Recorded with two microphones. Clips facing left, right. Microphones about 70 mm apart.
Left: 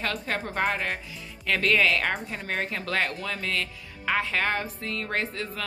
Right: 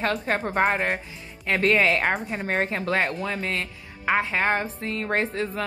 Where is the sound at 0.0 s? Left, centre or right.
Right.